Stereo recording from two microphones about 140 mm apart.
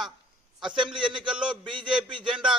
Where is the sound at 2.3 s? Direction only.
5° right (ahead or behind).